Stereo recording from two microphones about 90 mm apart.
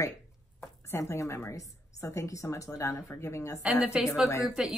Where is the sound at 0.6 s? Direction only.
35° left (ahead or behind).